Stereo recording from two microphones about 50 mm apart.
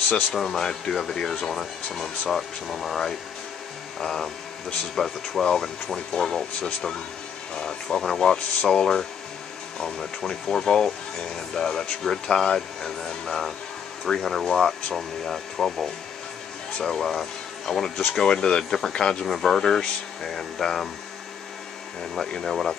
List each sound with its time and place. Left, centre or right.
0.1 s speech: centre
22.1 s speech: centre